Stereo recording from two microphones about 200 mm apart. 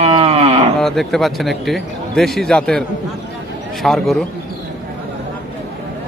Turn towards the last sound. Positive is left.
turn(degrees=0)  # may be behind; listen again after turning